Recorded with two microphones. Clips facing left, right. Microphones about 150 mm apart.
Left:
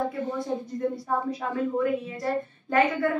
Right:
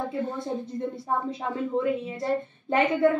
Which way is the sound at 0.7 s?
25° right (ahead or behind).